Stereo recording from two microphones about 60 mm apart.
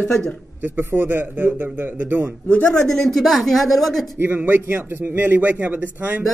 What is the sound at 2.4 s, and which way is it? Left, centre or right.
Speech, centre.